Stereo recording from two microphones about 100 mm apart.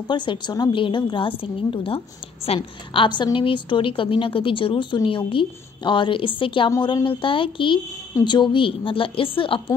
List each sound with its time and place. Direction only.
0.1 s a woman's voice: 50° left (ahead or behind)
2.4 s a woman's voice: 75° left (ahead or behind)